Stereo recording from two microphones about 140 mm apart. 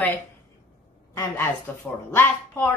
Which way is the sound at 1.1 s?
20° left (ahead or behind).